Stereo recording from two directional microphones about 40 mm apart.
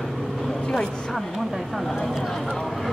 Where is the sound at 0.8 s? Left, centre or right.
Left.